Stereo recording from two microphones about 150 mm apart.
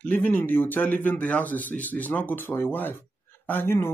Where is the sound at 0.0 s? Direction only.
10° left (ahead or behind).